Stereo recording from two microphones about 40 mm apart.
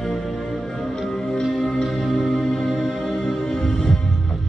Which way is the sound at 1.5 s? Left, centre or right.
Centre.